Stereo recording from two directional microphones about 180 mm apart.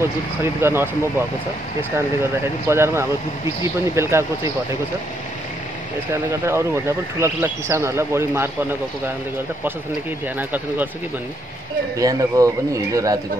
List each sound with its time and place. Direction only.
0.0 s speech: 15° right (ahead or behind)
2.7 s speech: 15° right (ahead or behind)
6.1 s speech: 15° right (ahead or behind)
10.2 s speech: 10° right (ahead or behind)
12.0 s speech: 20° right (ahead or behind)